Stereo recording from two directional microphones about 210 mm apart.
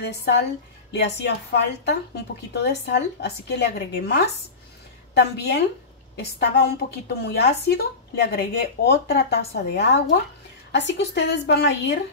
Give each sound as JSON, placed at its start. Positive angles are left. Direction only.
{"t": 0.0, "sound": "a woman's voice", "side_deg": 50}